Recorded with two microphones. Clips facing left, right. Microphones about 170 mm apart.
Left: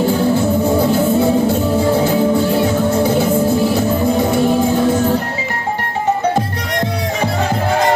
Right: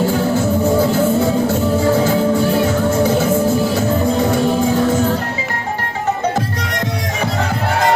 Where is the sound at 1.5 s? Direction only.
15° left (ahead or behind).